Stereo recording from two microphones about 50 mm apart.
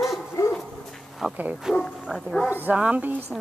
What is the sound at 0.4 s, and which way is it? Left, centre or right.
Dog, left.